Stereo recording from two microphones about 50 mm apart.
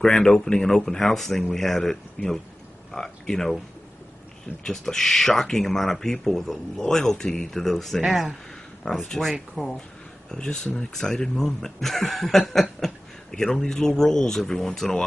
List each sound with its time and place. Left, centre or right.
0.0 s speech: centre
4.6 s speech: centre
8.1 s speech: centre
8.8 s speech: centre
10.3 s speech: centre